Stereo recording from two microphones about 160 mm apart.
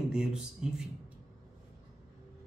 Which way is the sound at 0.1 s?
5° right (ahead or behind).